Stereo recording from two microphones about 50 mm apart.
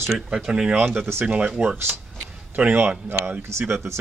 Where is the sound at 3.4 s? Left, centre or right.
Right.